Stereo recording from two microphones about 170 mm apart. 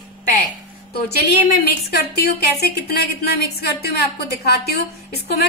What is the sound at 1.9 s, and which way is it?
A woman's voice, 70° left (ahead or behind).